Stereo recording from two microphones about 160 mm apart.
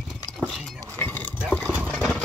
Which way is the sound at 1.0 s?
10° left (ahead or behind).